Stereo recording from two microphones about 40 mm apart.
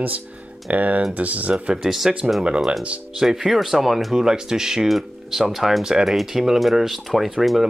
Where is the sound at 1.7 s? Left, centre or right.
Centre.